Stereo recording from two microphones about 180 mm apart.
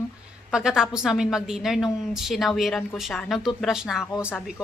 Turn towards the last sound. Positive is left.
turn(degrees=0)  # may be behind; listen again after turning